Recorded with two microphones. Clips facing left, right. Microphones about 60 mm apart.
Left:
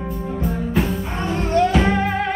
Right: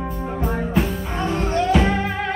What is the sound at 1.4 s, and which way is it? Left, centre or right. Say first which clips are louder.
Music: left 2 dB; centre.